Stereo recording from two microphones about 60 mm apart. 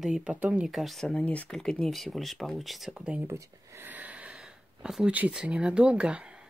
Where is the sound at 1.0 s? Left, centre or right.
Left.